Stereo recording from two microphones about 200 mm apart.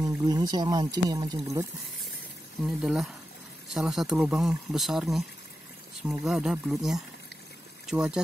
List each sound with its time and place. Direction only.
0.0 s speech: 20° right (ahead or behind)
2.6 s speech: centre (ahead or behind)